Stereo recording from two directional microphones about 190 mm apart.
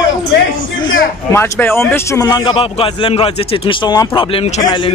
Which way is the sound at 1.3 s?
10° left (ahead or behind).